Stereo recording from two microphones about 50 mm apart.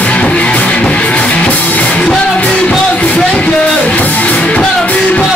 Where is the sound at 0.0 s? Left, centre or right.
Left.